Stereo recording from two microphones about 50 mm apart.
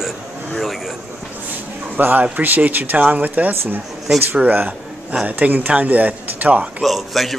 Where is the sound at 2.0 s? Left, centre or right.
Right.